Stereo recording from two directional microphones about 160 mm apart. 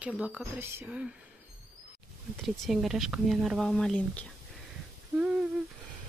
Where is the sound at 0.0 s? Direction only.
10° right (ahead or behind).